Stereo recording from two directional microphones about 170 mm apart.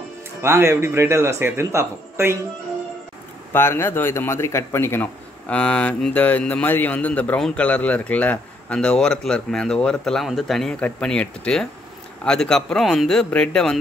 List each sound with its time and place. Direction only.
0.4 s speech: 15° right (ahead or behind)
3.5 s a man's voice: 15° left (ahead or behind)